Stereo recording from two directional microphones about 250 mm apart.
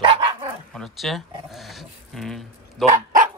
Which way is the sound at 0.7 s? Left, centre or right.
Centre.